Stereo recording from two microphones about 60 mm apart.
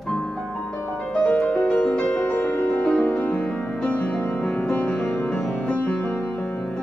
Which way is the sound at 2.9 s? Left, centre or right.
Centre.